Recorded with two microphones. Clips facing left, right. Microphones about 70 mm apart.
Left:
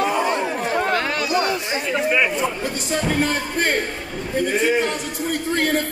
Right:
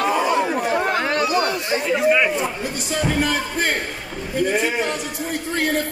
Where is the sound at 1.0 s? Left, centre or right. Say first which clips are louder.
Right 3 dB; right.